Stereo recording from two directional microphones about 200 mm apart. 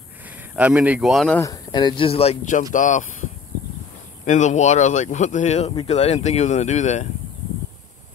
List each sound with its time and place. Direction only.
0.6 s speech: 5° right (ahead or behind)
1.4 s speech: 20° left (ahead or behind); by 3.3 s 40° left (ahead or behind)
4.3 s speech: 35° left (ahead or behind)